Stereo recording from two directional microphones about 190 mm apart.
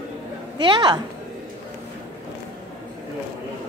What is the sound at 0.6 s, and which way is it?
Speech, 25° right (ahead or behind).